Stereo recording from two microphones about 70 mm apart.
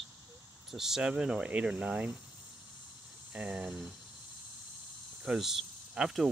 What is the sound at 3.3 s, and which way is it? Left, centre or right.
Speech, centre.